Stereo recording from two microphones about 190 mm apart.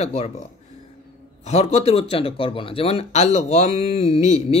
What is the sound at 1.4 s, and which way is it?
Speech, 35° left (ahead or behind).